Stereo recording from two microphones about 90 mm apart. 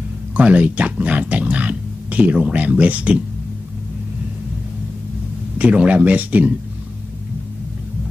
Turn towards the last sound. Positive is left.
turn(degrees=-15)  # may be behind; listen again after turning